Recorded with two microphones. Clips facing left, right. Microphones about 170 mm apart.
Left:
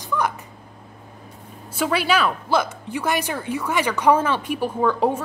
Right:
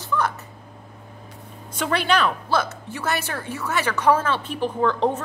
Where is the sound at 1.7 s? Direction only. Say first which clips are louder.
Left 1 dB; 5° left (ahead or behind).